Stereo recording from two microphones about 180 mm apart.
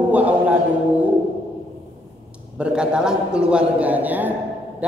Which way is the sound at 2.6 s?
5° right (ahead or behind).